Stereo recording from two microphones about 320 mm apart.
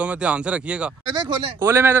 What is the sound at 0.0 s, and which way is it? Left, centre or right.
A man's voice, centre.